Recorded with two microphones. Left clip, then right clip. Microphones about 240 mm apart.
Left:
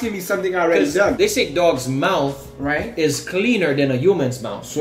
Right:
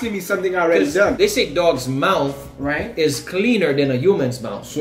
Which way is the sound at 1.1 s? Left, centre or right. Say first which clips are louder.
Right 1 dB; centre.